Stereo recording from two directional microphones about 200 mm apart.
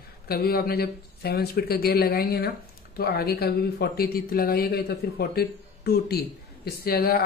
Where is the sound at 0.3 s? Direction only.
50° left (ahead or behind).